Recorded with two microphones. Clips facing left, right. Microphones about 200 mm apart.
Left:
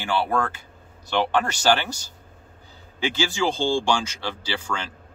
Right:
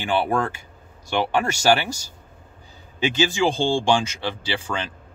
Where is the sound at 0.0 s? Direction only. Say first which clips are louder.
Right 2 dB; 20° right (ahead or behind).